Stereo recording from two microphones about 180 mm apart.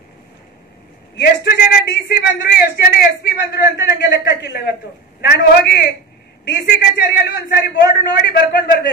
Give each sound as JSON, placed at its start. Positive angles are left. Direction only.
{"t": 1.1, "sound": "a man's voice", "side_deg": 65}